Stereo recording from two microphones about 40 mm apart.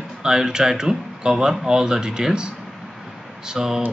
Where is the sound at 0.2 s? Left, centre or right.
Centre.